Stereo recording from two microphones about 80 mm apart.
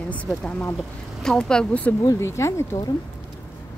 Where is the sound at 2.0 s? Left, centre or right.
Left.